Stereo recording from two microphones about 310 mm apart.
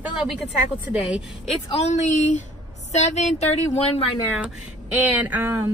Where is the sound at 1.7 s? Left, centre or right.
Left.